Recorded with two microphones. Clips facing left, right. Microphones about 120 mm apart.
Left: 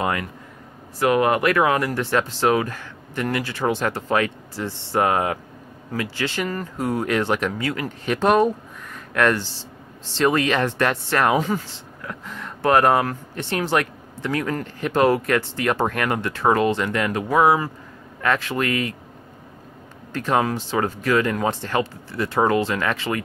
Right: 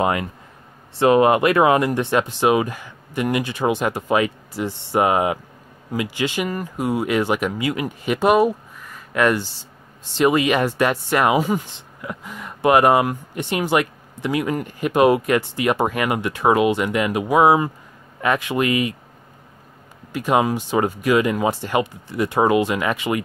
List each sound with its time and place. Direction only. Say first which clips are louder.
0.0 s speech: right 4 dB; 20° right (ahead or behind)
20.1 s speech: right 2 dB; 10° right (ahead or behind)